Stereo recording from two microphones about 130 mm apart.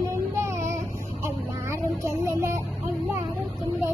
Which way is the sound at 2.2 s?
20° right (ahead or behind).